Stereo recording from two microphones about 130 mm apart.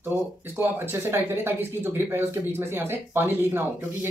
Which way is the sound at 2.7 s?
15° right (ahead or behind).